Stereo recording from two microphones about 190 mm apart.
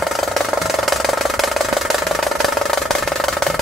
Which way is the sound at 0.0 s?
Centre (ahead or behind).